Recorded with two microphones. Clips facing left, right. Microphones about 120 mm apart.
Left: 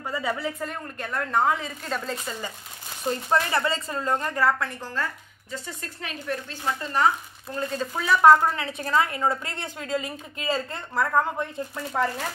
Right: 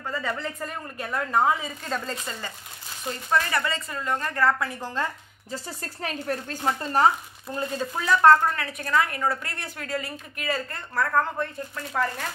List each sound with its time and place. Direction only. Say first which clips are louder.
0.1 s a woman's voice: left 2 dB; 10° left (ahead or behind)
3.0 s speech: left 2 dB; 30° left (ahead or behind)
4.2 s speech: even; 15° left (ahead or behind)
4.5 s a woman's voice: right 1 dB; centre (ahead or behind)
4.8 s speech: right 3 dB; 20° right (ahead or behind)
6.0 s a woman's voice: right 2 dB; 40° right (ahead or behind)
7.4 s a woman's voice: even; 5° right (ahead or behind)
8.5 s a woman's voice: left 1 dB; 25° left (ahead or behind)